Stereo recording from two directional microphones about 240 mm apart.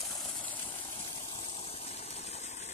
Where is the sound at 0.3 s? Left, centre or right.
Left.